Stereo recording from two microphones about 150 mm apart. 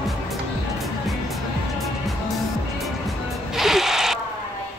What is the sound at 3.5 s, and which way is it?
Music, centre (ahead or behind).